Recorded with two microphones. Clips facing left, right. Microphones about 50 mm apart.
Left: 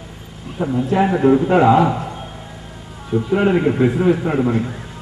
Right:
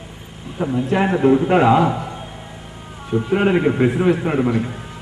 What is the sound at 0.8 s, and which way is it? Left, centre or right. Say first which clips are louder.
Speech: left 2 dB; right.